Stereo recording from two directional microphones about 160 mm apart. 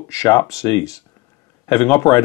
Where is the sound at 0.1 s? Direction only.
20° left (ahead or behind).